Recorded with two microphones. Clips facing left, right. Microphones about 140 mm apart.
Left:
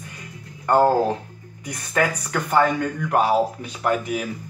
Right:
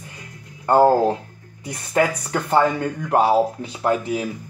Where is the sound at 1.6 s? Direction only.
25° right (ahead or behind).